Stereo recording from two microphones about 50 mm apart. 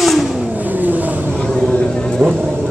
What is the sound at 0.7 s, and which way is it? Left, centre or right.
Vehicle, right.